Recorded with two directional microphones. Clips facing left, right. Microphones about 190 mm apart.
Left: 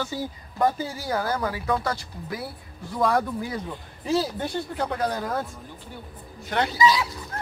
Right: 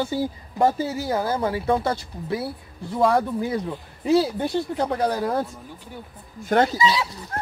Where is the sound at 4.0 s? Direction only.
15° right (ahead or behind).